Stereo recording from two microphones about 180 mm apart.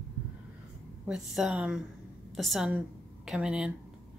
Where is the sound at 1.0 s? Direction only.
5° right (ahead or behind).